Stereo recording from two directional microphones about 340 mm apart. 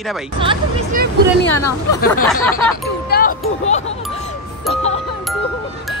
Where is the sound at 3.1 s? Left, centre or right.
Left.